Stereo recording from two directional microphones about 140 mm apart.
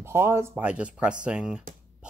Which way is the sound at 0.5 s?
10° right (ahead or behind).